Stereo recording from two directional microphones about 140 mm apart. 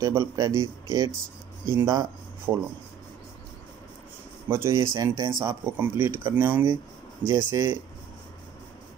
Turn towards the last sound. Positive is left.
turn(degrees=-25)  # may be behind; listen again after turning